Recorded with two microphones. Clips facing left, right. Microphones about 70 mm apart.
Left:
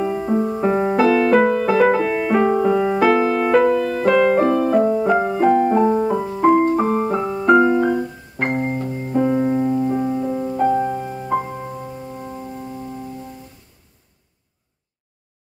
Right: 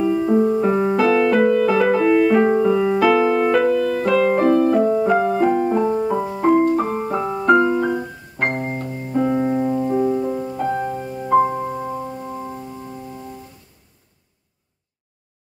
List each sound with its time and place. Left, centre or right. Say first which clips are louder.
0.0 s music: right 3 dB; left
0.3 s music: right 1 dB; centre
4.4 s piano: right 1 dB; centre
5.3 s music: left 2 dB; centre
5.6 s music: left 3 dB; left
6.1 s music: even; centre
6.7 s music: left 2 dB; centre
7.6 s keyboard: left 2 dB; centre
7.9 s piano: left 2 dB; centre
9.2 s music: left 1 dB; centre
11.5 s music: right 5 dB; right